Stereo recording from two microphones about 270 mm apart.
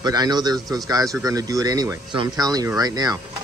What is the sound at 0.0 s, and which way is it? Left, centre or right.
Speech, centre.